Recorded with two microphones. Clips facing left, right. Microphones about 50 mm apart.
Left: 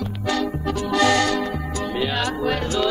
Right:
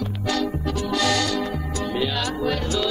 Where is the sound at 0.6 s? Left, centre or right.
Left.